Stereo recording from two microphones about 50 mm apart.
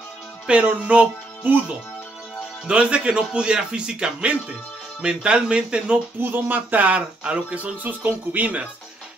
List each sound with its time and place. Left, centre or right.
0.5 s music: right
2.7 s speech: right
6.3 s speech: right
7.2 s speech: right